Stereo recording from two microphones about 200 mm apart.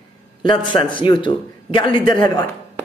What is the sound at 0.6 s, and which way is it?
A man's voice, 25° left (ahead or behind).